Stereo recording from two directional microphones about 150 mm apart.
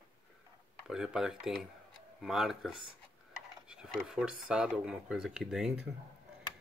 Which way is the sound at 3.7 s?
5° right (ahead or behind).